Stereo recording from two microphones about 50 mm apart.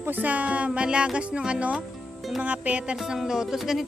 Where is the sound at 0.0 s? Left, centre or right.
Right.